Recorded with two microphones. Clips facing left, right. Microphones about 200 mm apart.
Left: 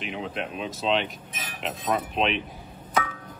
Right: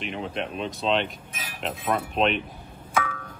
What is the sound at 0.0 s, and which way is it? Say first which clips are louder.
Speech: right 1 dB; centre (ahead or behind).